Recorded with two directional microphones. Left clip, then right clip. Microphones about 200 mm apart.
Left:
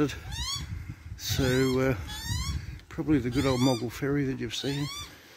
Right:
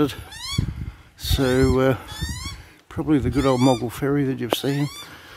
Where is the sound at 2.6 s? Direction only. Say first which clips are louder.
Right 6 dB; 15° right (ahead or behind).